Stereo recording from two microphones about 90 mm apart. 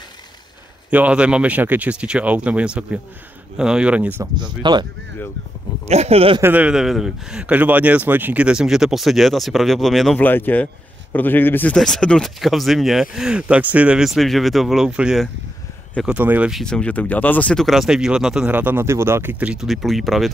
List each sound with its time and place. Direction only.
0.8 s speech: 15° right (ahead or behind)
4.4 s speech: 55° right (ahead or behind)
6.1 s speech: 90° right
6.4 s speech: 20° right (ahead or behind)
6.7 s speech: 5° right (ahead or behind)
10.1 s speech: 20° left (ahead or behind)
11.7 s speech: 5° left (ahead or behind)
14.9 s speech: 10° right (ahead or behind)
16.6 s speech: 10° left (ahead or behind)
17.6 s speech: centre (ahead or behind)
18.5 s speech: 20° right (ahead or behind)
19.4 s speech: 5° right (ahead or behind)